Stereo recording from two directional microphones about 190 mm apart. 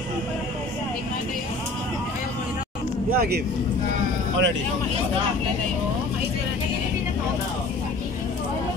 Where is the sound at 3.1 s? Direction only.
55° right (ahead or behind).